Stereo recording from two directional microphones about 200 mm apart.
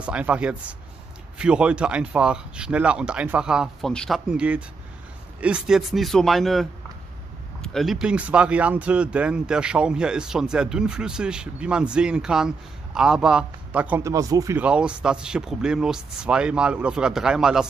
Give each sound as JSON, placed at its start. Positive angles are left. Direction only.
{"t": 0.0, "sound": "speech", "side_deg": -5}